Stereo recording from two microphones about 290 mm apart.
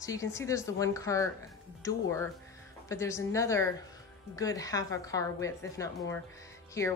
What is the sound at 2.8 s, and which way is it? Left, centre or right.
Speech, centre.